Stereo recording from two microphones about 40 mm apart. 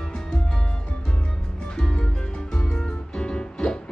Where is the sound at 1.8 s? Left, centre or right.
Centre.